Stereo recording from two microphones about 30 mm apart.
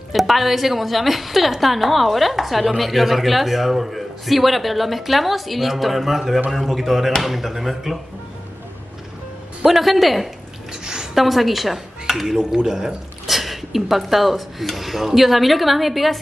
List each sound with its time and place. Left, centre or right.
0.1 s a man's voice: centre
9.7 s a man's voice: centre
10.7 s a sound: right
11.1 s speech: centre
12.6 s speech: right
13.3 s a man's voice: centre